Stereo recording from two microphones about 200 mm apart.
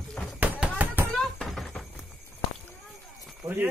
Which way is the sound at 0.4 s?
10° right (ahead or behind).